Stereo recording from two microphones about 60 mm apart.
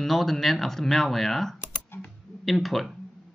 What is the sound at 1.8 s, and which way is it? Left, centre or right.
Typing, left.